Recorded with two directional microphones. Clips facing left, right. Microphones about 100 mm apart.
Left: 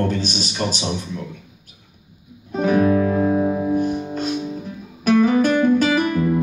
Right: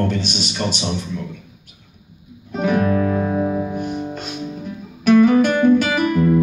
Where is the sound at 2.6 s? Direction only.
35° left (ahead or behind).